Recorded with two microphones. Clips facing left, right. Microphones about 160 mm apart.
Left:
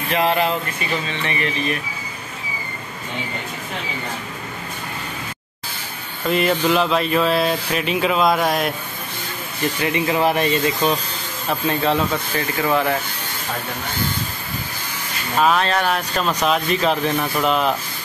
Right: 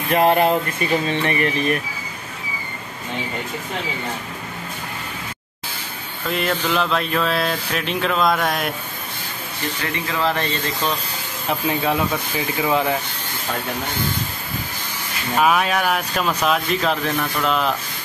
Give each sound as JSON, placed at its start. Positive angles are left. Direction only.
{"t": 0.1, "sound": "speech", "side_deg": -50}
{"t": 6.2, "sound": "speech", "side_deg": 0}
{"t": 9.9, "sound": "speech", "side_deg": 15}
{"t": 11.4, "sound": "speech", "side_deg": -10}
{"t": 15.3, "sound": "speech", "side_deg": -10}